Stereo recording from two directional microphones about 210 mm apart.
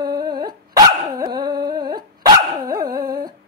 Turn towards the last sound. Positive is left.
turn(degrees=-20)  # may be behind; listen again after turning